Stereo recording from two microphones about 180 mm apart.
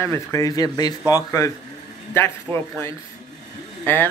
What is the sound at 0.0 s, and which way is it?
A man's voice, 15° left (ahead or behind).